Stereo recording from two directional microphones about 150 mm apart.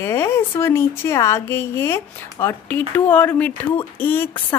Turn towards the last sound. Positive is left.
turn(degrees=15)  # may be behind; listen again after turning